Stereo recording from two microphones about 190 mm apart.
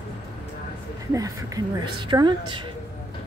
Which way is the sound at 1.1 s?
20° right (ahead or behind).